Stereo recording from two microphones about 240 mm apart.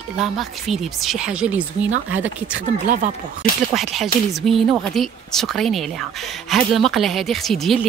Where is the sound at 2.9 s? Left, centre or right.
Right.